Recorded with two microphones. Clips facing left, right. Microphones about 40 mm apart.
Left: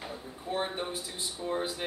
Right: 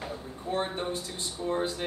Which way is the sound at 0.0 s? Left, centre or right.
Centre.